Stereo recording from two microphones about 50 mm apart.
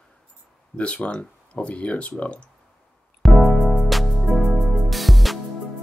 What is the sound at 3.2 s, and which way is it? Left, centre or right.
Music, centre.